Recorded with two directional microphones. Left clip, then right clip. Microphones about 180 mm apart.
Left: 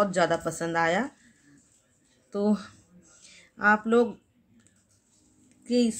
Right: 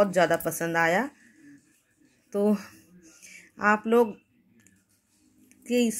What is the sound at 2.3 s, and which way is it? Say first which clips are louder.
Speech: right 2 dB; 20° right (ahead or behind).